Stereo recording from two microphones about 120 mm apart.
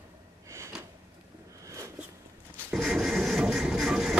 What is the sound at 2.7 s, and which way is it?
Printer, centre (ahead or behind).